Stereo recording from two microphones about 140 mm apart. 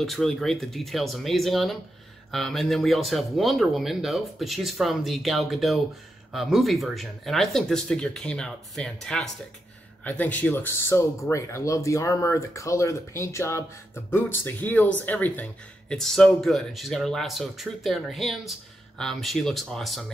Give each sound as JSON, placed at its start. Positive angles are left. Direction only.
{"t": 0.0, "sound": "speech", "side_deg": 0}